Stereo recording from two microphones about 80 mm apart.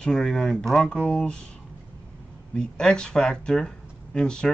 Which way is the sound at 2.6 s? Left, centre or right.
Centre.